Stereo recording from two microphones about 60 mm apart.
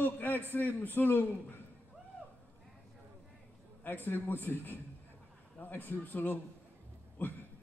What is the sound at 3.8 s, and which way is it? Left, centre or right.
A man's voice, left.